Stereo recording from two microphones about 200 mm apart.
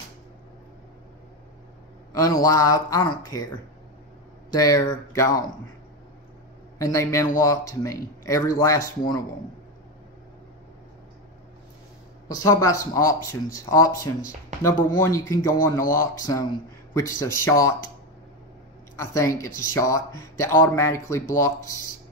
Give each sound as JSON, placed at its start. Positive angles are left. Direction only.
{"t": 2.1, "sound": "speech", "side_deg": 15}
{"t": 4.5, "sound": "speech", "side_deg": 20}
{"t": 6.8, "sound": "speech", "side_deg": 15}
{"t": 12.4, "sound": "speech", "side_deg": 15}
{"t": 18.9, "sound": "speech", "side_deg": 15}